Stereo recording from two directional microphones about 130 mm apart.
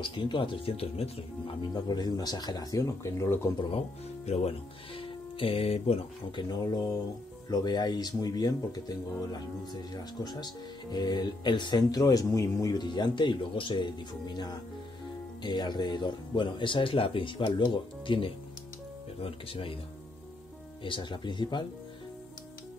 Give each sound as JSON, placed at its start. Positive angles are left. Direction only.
{"t": 0.0, "sound": "speech", "side_deg": 40}
{"t": 1.7, "sound": "speech", "side_deg": 30}
{"t": 4.3, "sound": "speech", "side_deg": 50}
{"t": 6.5, "sound": "speech", "side_deg": 30}
{"t": 20.8, "sound": "speech", "side_deg": 40}